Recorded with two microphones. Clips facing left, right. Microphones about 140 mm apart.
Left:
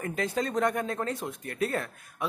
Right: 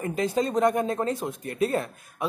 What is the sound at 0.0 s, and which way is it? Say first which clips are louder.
Speech: right 4 dB; 25° right (ahead or behind).